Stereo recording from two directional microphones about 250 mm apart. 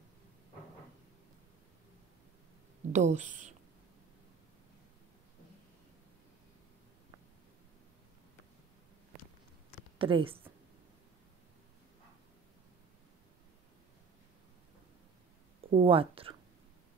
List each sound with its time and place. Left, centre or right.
2.9 s speech: right
9.9 s a woman's voice: right
15.7 s speech: right